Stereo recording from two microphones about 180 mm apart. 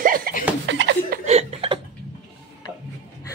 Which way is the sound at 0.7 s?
90° right.